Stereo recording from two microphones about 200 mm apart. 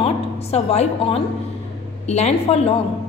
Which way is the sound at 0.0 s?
30° left (ahead or behind).